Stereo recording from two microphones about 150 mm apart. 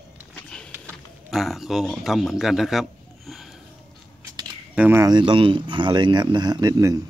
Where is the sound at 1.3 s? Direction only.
Centre (ahead or behind).